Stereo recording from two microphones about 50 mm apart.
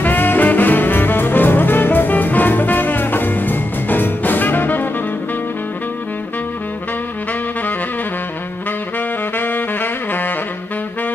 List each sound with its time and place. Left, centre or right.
0.0 s music: left
9.4 s saxophone: left